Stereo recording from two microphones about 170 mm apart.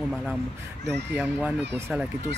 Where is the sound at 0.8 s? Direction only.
10° right (ahead or behind).